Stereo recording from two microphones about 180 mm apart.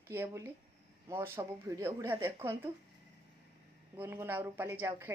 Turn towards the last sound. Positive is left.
turn(degrees=-10)  # may be behind; listen again after turning